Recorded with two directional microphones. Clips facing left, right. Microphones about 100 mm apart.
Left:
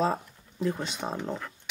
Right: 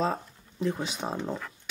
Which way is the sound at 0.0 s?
Centre (ahead or behind).